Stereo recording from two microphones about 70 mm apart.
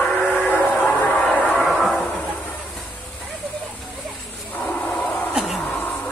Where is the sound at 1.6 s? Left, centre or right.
Centre.